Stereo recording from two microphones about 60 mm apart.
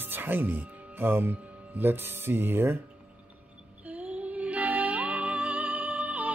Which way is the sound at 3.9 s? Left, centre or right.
Right.